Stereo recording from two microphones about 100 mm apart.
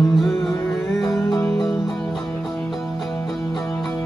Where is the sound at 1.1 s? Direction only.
25° left (ahead or behind).